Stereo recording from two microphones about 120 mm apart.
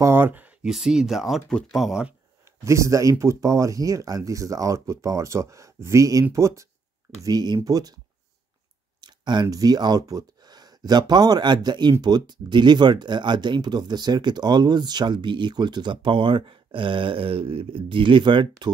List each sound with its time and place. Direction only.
0.0 s a sound: 20° right (ahead or behind)
0.7 s speech: 5° right (ahead or behind)
2.6 s speech: 25° right (ahead or behind)
9.0 s speech: 35° right (ahead or behind)